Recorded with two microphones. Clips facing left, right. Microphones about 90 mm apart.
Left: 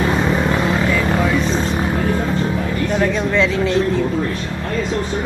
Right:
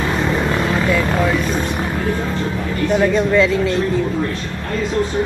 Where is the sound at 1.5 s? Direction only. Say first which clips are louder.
Left 1 dB; 15° right (ahead or behind).